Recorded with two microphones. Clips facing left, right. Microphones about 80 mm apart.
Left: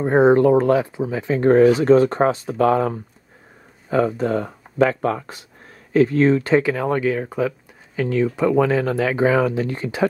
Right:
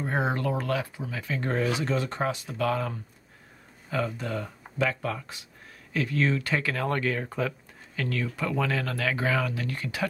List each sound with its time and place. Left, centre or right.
0.0 s speech: left
1.5 s speech: left
5.9 s speech: left
6.7 s speech: centre